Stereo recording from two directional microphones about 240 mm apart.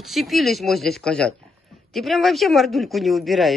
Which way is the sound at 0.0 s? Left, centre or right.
Centre.